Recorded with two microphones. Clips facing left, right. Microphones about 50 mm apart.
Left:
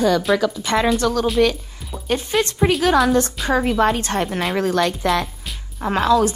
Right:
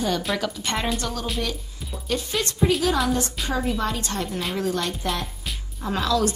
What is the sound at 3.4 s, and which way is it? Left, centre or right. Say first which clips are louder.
Speech: left 8 dB; left.